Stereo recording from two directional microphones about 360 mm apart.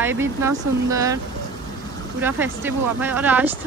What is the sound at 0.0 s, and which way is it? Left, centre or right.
Speech, centre.